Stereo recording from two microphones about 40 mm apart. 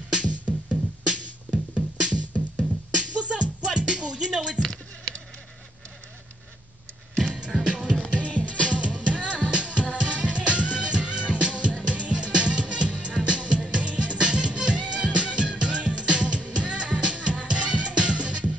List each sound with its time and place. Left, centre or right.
0.1 s music: right
3.0 s beatboxing: right
3.6 s music: centre
4.6 s a sound: centre
7.3 s music: centre
8.1 s music: left
8.6 s music: right